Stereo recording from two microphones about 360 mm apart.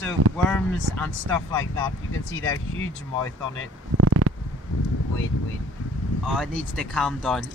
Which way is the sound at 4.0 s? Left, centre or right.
Right.